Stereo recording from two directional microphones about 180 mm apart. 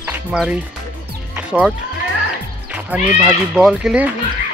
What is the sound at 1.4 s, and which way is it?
Music, 5° right (ahead or behind).